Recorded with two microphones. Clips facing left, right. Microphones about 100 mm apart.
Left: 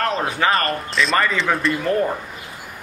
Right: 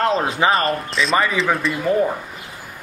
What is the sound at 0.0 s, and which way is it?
Speech, 20° right (ahead or behind).